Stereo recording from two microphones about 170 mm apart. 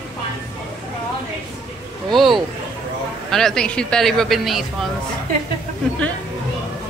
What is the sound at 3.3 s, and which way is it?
A man's voice, 5° left (ahead or behind).